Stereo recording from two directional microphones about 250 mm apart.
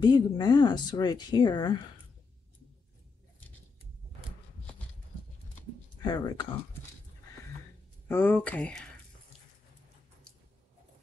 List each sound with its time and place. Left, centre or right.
0.0 s speech: centre
6.0 s speech: centre
8.1 s speech: centre